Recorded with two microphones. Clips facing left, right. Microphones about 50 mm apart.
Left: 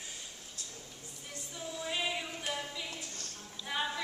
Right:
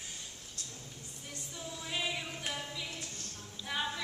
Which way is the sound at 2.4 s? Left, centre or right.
Centre.